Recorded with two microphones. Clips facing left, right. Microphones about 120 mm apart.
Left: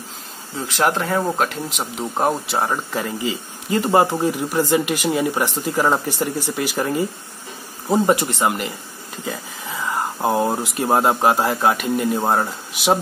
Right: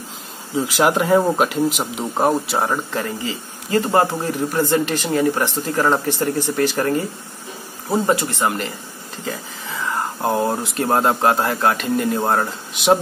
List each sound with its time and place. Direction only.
0.7 s speech: 5° right (ahead or behind)
3.7 s speech: 15° left (ahead or behind)
10.2 s speech: 10° left (ahead or behind)